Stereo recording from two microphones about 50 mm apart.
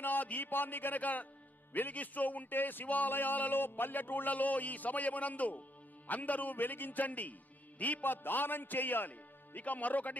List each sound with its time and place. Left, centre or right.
0.0 s a man's voice: left